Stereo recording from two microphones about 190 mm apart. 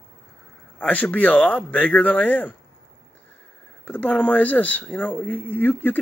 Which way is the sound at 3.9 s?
10° left (ahead or behind).